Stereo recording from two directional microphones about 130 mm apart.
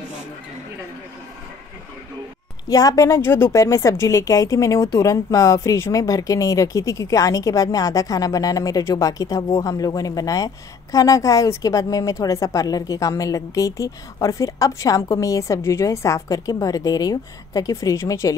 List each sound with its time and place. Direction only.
2.7 s a woman's voice: 30° left (ahead or behind)